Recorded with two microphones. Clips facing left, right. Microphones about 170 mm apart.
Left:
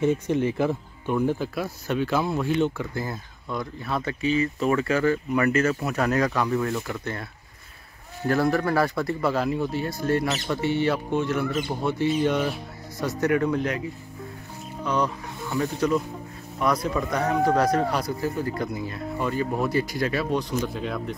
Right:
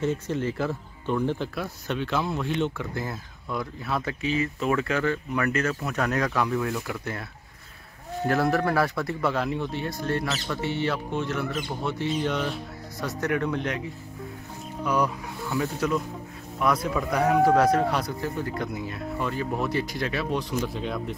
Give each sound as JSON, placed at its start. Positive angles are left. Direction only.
{"t": 0.0, "sound": "speech", "side_deg": 15}
{"t": 8.3, "sound": "speech", "side_deg": 0}
{"t": 10.5, "sound": "speech", "side_deg": 20}
{"t": 15.5, "sound": "speech", "side_deg": -5}